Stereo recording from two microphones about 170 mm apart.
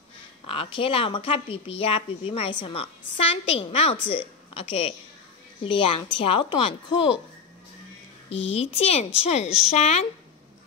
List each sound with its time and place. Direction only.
0.5 s a woman's voice: 35° left (ahead or behind)
8.3 s a woman's voice: 35° left (ahead or behind)